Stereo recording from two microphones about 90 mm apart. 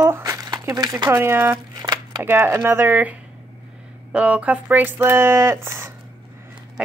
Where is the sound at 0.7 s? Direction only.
45° right (ahead or behind).